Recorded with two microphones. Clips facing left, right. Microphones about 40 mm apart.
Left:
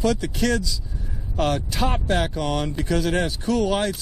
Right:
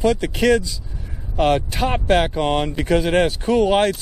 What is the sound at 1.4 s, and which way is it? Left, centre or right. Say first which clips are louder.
Speech: right 5 dB; centre.